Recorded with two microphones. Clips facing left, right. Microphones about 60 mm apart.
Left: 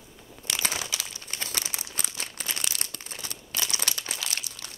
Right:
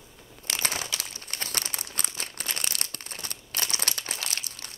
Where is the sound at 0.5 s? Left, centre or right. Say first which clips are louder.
Even; right.